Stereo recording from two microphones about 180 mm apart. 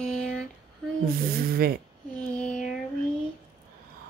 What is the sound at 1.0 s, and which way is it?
Speech, 55° right (ahead or behind).